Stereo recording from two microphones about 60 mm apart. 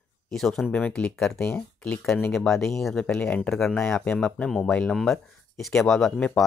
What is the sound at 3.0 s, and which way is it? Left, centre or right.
Speech, left.